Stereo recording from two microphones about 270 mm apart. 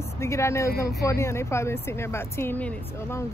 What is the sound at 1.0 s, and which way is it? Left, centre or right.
Speech, centre.